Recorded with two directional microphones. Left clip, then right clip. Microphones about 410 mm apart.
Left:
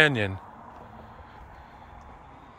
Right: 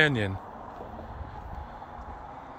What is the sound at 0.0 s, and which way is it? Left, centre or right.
Speech, centre.